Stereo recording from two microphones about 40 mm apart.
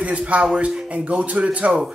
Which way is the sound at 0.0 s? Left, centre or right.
Right.